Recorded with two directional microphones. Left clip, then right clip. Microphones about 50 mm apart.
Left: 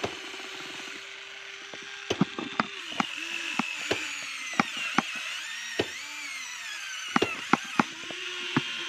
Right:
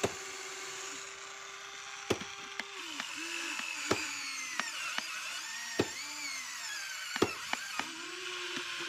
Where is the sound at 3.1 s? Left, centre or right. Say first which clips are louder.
Left 5 dB; right.